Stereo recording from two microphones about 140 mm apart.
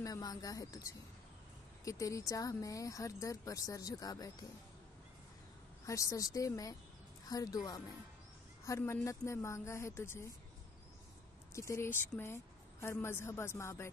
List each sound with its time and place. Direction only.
0.0 s speech: 25° left (ahead or behind)
5.9 s speech: 25° left (ahead or behind)
11.5 s speech: 20° left (ahead or behind)